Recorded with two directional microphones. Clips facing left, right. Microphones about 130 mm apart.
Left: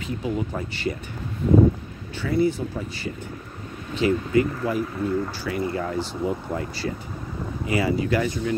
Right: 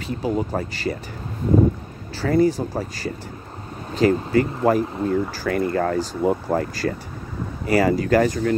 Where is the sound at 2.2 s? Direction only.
40° right (ahead or behind).